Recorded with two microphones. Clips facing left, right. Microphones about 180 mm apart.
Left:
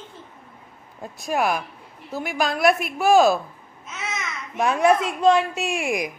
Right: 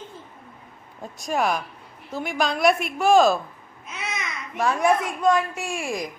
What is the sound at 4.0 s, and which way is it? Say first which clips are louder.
A child's voice: left 1 dB; 20° left (ahead or behind).